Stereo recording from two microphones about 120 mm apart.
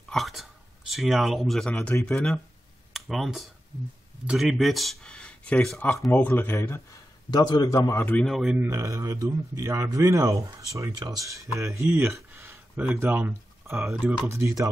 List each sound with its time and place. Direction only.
0.1 s a sound: centre (ahead or behind)
2.0 s a man's voice: 10° left (ahead or behind)
7.2 s a man's voice: 35° left (ahead or behind); by 8.3 s 15° left (ahead or behind)
8.3 s speech: 5° right (ahead or behind)
8.5 s speech: 20° right (ahead or behind)